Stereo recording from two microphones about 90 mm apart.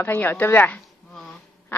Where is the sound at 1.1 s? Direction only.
5° left (ahead or behind).